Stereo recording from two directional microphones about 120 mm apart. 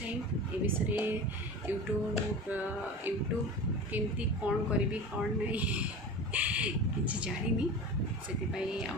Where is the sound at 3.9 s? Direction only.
10° right (ahead or behind).